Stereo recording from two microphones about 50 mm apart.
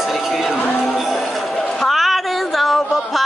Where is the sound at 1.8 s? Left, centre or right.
Centre.